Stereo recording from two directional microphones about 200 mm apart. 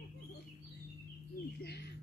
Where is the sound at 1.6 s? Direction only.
55° left (ahead or behind).